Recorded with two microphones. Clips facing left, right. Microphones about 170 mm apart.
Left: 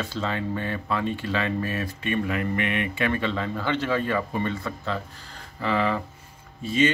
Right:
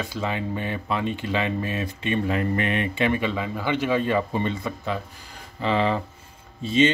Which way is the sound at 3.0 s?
15° right (ahead or behind).